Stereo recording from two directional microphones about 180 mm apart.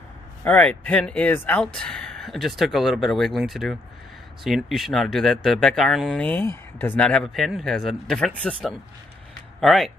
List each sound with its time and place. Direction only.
0.4 s speech: 10° left (ahead or behind)